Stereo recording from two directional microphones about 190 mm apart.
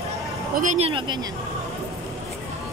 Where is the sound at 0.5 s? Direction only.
40° right (ahead or behind).